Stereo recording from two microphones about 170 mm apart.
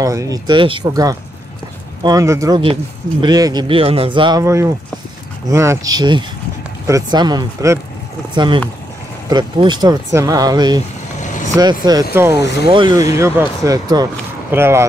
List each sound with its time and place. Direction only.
0.0 s speech: 20° right (ahead or behind)
2.6 s speech: 30° right (ahead or behind)
9.3 s speech: 25° right (ahead or behind)
11.1 s vehicle: 45° left (ahead or behind)
11.5 s speech: 25° right (ahead or behind)
12.6 s speech: 30° right (ahead or behind)